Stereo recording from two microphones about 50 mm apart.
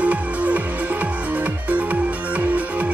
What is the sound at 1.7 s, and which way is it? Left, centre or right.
Music, right.